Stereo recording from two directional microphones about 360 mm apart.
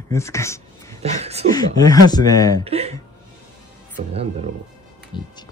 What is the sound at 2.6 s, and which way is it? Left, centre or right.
Speech, centre.